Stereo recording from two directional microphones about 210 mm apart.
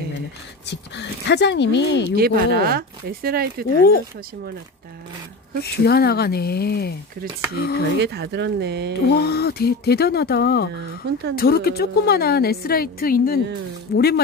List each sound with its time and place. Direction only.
0.7 s speech: 55° left (ahead or behind)
2.1 s speech: 45° right (ahead or behind)
5.6 s a woman's voice: 50° left (ahead or behind)
8.0 s speech: 55° right (ahead or behind)
9.0 s a woman's voice: 50° left (ahead or behind)